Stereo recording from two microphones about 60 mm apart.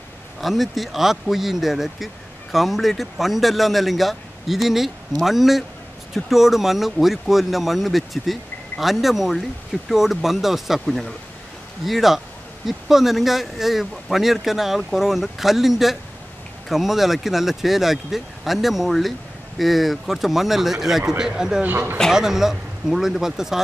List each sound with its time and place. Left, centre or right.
0.4 s speech: centre
21.6 s speech: right
22.1 s speech: centre